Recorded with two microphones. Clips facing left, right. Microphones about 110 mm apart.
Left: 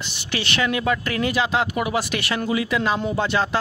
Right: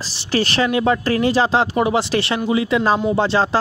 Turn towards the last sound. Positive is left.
turn(degrees=-30)  # may be behind; listen again after turning